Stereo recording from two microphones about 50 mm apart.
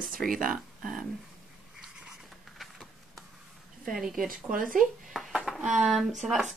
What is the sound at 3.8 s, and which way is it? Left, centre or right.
Speech, centre.